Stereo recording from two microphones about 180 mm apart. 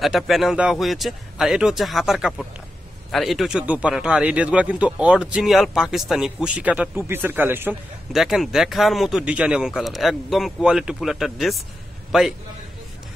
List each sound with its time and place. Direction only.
0.0 s a man's voice: centre (ahead or behind)
8.1 s a man's voice: centre (ahead or behind)